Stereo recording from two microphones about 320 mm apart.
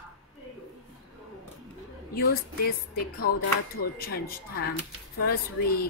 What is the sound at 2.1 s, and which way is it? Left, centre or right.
A woman's voice, left.